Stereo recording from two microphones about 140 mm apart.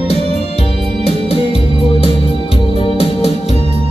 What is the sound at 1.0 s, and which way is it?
Music, 45° left (ahead or behind).